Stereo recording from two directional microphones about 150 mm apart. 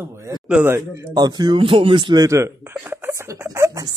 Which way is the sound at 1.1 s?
30° right (ahead or behind).